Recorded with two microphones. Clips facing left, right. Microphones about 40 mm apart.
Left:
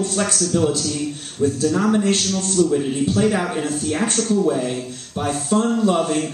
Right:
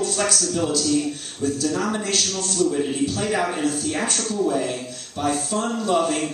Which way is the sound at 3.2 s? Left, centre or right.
Centre.